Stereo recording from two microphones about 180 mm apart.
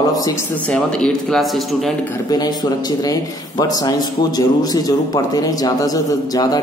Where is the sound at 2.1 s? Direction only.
20° left (ahead or behind).